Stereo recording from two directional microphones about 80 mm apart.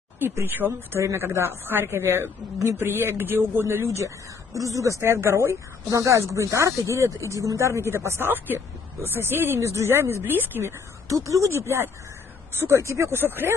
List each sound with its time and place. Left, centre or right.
0.2 s speech: right
11.1 s speech: right